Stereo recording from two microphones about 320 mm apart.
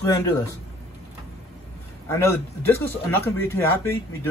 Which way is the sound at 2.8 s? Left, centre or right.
Centre.